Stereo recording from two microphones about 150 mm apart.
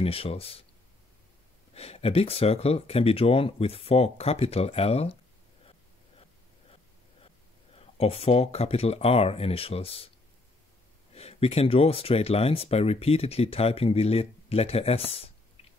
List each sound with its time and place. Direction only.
0.0 s speech: 40° left (ahead or behind)
1.7 s speech: 45° left (ahead or behind)
7.7 s speech: 40° left (ahead or behind)
11.1 s speech: 45° left (ahead or behind)